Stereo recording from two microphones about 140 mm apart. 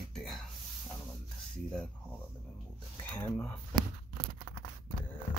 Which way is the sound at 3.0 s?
10° left (ahead or behind).